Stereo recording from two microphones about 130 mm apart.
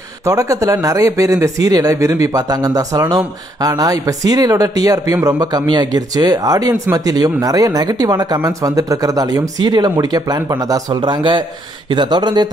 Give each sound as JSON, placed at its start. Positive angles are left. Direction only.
{"t": 0.2, "sound": "speech", "side_deg": -25}